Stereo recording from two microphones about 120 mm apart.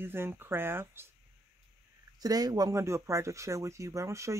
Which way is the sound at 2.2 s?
30° right (ahead or behind).